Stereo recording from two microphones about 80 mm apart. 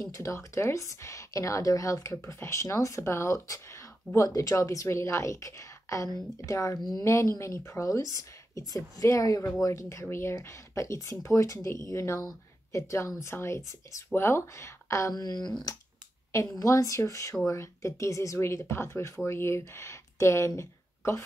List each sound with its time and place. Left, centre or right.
0.2 s a woman's voice: left
6.8 s speech: left
7.1 s a woman's voice: left
15.1 s speech: left
16.3 s a woman's voice: left